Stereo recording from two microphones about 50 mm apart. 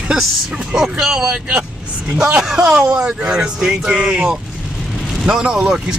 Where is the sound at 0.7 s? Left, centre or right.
Centre.